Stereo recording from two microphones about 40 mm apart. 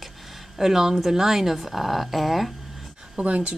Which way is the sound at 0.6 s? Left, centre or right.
Centre.